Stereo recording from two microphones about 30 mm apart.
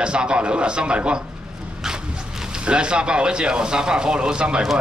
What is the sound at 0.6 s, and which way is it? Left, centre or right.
Speech, right.